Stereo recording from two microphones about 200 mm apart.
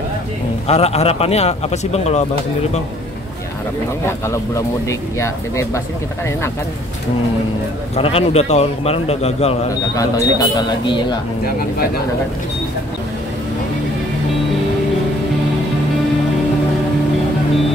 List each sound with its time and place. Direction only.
0.7 s a man's voice: 30° left (ahead or behind)
4.0 s speech: 15° left (ahead or behind)
7.9 s a man's voice: 30° left (ahead or behind)
9.7 s speech: 15° left (ahead or behind)